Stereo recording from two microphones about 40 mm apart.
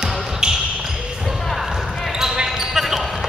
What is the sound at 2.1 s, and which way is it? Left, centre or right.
Basketball bounce, centre.